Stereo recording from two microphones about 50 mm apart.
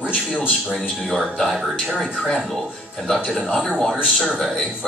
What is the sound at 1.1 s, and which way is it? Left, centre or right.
Speech, centre.